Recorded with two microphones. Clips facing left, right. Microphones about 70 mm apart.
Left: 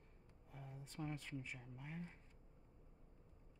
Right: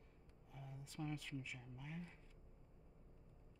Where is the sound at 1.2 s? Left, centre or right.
Left.